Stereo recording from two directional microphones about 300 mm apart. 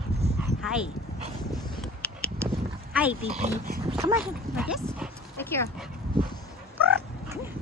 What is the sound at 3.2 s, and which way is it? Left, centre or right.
Speech, right.